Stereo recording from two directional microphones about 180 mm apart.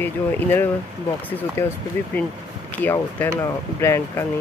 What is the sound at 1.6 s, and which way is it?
Speech, 15° left (ahead or behind).